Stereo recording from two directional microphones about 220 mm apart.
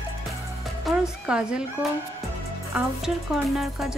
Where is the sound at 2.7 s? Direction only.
Centre (ahead or behind).